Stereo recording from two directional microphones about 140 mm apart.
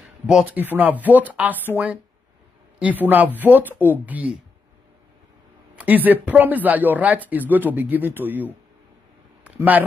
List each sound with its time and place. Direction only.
0.3 s speech: 5° right (ahead or behind)
2.8 s speech: 10° right (ahead or behind)
5.8 s speech: 10° right (ahead or behind)
9.4 s a sound: 10° right (ahead or behind)